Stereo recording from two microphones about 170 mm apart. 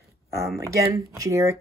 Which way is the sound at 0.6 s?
20° right (ahead or behind).